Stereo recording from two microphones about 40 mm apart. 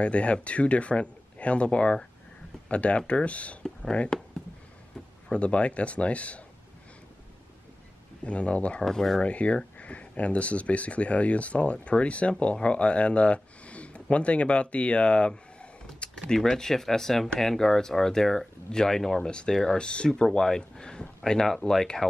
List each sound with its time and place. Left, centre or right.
0.0 s speech: left
4.1 s speech: centre
5.4 s speech: left
8.2 s speech: left
8.8 s speech: centre
9.2 s speech: left
12.6 s a sound: left
14.1 s speech: left
16.0 s a sound: left
16.4 s speech: centre
19.8 s speech: left
20.3 s speech: centre